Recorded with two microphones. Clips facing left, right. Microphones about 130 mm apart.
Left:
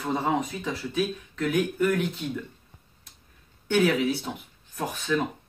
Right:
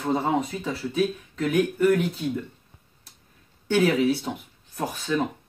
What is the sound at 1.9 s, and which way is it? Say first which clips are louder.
Speech: right 4 dB; 10° right (ahead or behind).